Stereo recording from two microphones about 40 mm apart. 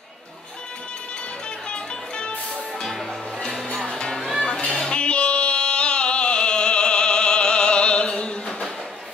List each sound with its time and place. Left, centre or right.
1.7 s music: left
2.8 s music: centre
4.0 s music: centre